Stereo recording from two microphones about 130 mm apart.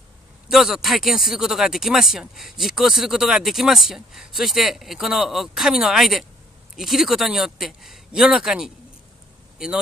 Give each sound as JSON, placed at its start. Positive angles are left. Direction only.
{"t": 0.5, "sound": "speech", "side_deg": 0}